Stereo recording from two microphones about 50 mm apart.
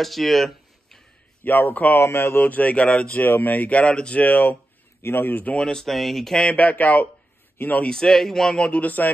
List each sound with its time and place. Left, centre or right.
0.0 s a sound: centre
1.4 s speech: left
2.0 s speech: left
2.4 s speech: left
3.2 s speech: left
4.2 s speech: left
5.0 s speech: left
5.6 s speech: centre
5.9 s speech: centre
6.4 s speech: left
7.6 s a man's voice: left
7.9 s speech: centre
8.8 s speech: left